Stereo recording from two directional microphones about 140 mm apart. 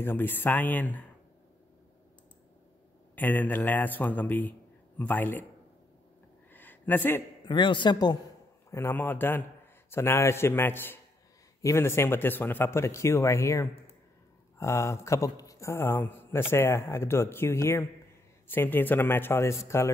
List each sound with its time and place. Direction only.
0.0 s a man's voice: 15° left (ahead or behind)
3.2 s a man's voice: 10° left (ahead or behind)
6.5 s a sound: 15° left (ahead or behind)
7.4 s speech: 35° left (ahead or behind)
8.6 s a man's voice: 20° left (ahead or behind)